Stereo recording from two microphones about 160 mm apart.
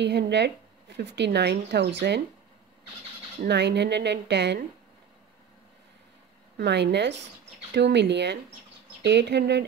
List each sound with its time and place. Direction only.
0.0 s speech: 90° right
3.4 s speech: 90° right
6.5 s speech: 90° right